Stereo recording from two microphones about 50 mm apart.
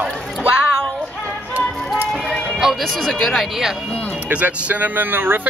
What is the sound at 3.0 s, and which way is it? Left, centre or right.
Speech, centre.